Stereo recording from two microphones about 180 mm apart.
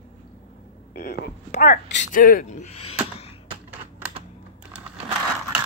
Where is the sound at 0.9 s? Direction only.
60° left (ahead or behind).